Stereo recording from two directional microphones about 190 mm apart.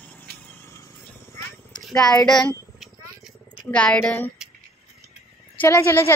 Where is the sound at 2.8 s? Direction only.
Centre (ahead or behind).